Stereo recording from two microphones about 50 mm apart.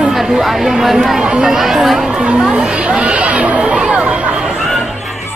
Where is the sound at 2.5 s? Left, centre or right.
Centre.